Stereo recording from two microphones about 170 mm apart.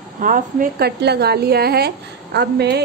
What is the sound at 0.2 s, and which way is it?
A woman's voice, 55° right (ahead or behind).